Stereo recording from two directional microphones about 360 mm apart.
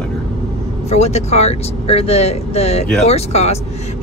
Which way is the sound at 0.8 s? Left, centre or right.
Centre.